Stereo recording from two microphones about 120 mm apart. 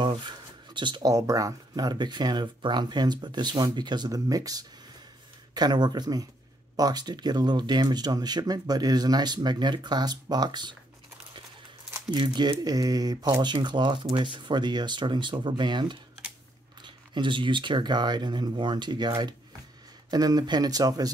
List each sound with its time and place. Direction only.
0.0 s a sound: 40° right (ahead or behind)
0.7 s speech: 40° right (ahead or behind)
1.1 s speech: 30° right (ahead or behind)
12.1 s speech: 35° right (ahead or behind)